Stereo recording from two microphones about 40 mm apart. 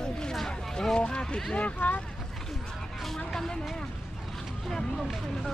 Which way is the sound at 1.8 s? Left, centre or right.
Left.